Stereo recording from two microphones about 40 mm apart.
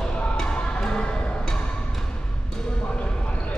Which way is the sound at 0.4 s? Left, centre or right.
Centre.